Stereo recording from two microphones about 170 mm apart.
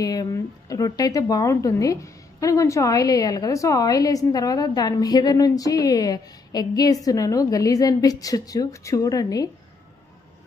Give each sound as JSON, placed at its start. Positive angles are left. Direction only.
{"t": 0.0, "sound": "speech", "side_deg": 20}